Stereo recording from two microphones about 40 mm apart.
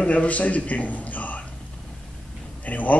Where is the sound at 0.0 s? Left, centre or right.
Left.